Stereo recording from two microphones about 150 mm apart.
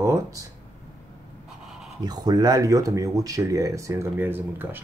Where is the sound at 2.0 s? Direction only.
25° right (ahead or behind).